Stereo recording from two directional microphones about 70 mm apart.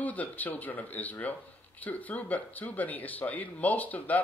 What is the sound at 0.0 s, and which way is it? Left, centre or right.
Speech, left.